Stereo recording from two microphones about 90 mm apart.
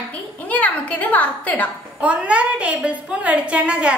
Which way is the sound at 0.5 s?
15° left (ahead or behind).